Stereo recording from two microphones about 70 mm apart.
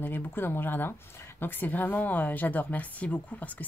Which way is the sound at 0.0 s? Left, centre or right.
Left.